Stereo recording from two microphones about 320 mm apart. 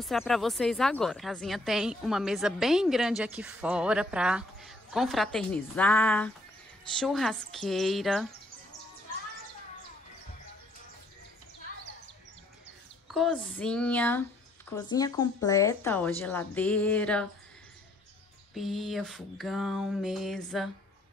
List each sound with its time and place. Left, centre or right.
0.0 s speech: centre
13.1 s speech: centre
18.5 s speech: centre